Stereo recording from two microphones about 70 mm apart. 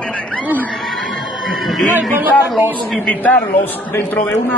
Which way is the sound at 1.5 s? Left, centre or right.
Centre.